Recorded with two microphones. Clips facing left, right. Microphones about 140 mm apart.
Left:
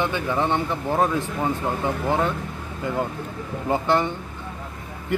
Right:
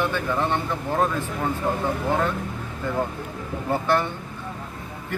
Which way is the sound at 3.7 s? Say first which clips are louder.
Left 1 dB; 15° left (ahead or behind).